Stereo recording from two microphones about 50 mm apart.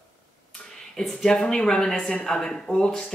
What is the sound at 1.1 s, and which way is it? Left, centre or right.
Speech, centre.